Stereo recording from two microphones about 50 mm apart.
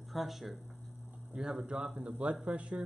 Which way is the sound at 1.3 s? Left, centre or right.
Centre.